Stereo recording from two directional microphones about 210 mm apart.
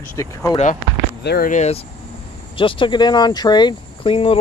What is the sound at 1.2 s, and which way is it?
Speech, 45° left (ahead or behind).